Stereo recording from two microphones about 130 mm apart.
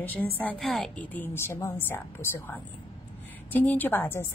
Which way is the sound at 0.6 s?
Centre (ahead or behind).